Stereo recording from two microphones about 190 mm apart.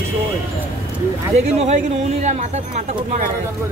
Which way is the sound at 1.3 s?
35° right (ahead or behind).